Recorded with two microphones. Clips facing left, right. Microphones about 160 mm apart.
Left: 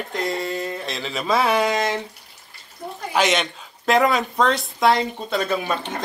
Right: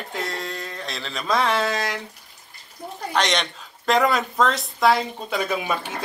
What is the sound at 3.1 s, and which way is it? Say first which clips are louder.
A woman's voice: left 3 dB; 5° left (ahead or behind).